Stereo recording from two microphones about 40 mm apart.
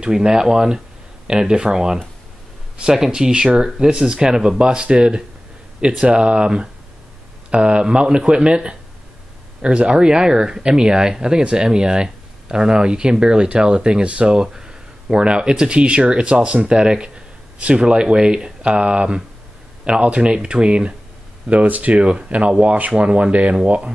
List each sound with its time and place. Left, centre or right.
0.0 s speech: centre
21.5 s speech: right